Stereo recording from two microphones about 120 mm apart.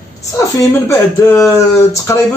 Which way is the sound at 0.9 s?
25° left (ahead or behind).